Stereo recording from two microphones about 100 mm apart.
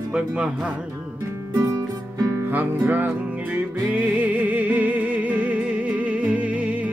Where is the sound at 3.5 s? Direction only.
15° right (ahead or behind).